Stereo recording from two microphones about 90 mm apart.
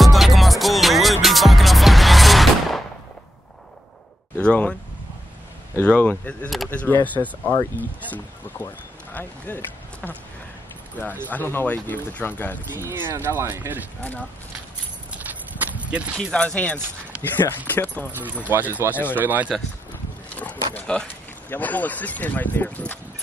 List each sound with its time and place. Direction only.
0.0 s music: centre (ahead or behind)
4.4 s speech: 10° left (ahead or behind)
5.8 s speech: 15° left (ahead or behind)
11.2 s speech: 20° left (ahead or behind)
12.7 s speech: 25° right (ahead or behind)
15.1 s horse: 15° right (ahead or behind)
16.2 s speech: 10° left (ahead or behind)
17.3 s speech: 25° left (ahead or behind)
18.5 s speech: 20° right (ahead or behind)
20.2 s speech: 15° left (ahead or behind)